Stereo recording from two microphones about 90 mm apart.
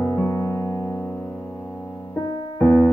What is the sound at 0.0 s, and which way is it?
Music, 25° left (ahead or behind).